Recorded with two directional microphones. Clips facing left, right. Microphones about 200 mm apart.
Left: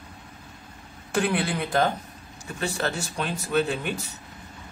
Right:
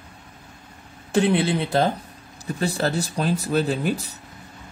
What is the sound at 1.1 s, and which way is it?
Speech, 25° right (ahead or behind).